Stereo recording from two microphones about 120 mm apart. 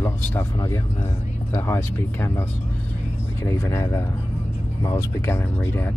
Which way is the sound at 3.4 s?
20° left (ahead or behind).